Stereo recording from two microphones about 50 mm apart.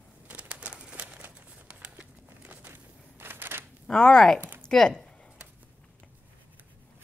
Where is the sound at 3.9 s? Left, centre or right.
Centre.